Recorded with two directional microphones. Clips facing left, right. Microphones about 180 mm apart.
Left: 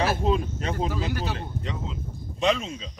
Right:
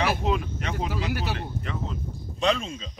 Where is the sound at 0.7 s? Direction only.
10° right (ahead or behind).